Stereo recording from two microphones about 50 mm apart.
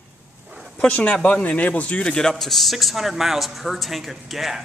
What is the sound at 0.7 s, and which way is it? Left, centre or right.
A man's voice, left.